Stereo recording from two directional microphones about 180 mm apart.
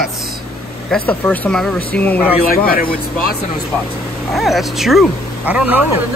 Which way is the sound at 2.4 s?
55° left (ahead or behind).